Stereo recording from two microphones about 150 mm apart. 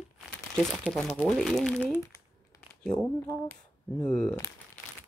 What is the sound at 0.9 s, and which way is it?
Speech, 5° left (ahead or behind).